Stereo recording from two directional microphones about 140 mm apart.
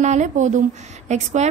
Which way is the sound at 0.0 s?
60° right (ahead or behind).